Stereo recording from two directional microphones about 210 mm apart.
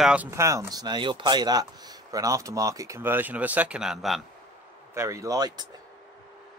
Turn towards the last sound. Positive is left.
turn(degrees=-20)  # may be behind; listen again after turning